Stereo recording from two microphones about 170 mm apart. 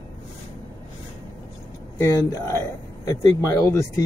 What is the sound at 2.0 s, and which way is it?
Speech, 15° left (ahead or behind).